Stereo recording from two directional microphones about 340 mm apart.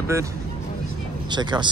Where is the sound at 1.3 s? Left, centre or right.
Centre.